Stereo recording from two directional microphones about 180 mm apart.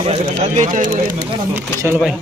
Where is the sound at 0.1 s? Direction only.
40° right (ahead or behind).